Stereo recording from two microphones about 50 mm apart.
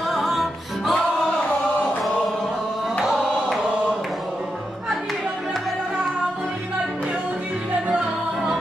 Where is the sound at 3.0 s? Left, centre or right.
Centre.